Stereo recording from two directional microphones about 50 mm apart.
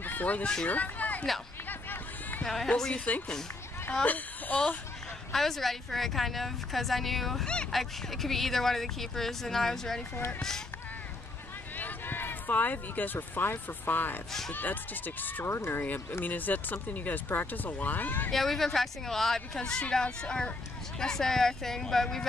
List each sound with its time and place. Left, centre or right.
0.0 s a sound: left
2.4 s speech: centre
3.1 s speech: left
5.3 s speech: centre
7.4 s a sound: centre
7.7 s speech: centre
11.7 s speech: left
15.4 s speech: left
15.8 s speech: left
18.3 s speech: centre